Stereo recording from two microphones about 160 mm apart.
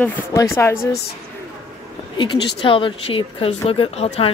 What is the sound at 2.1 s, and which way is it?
Speech, 35° left (ahead or behind).